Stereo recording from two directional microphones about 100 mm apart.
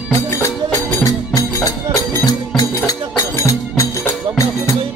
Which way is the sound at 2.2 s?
40° left (ahead or behind).